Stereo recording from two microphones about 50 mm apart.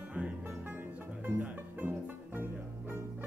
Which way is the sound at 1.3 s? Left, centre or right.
Right.